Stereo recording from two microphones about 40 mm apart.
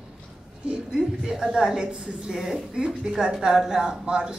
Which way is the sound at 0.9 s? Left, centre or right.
Centre.